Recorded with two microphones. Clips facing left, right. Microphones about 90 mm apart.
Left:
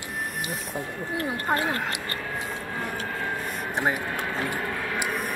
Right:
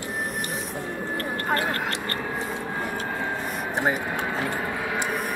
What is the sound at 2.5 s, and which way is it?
Vehicle, 15° right (ahead or behind).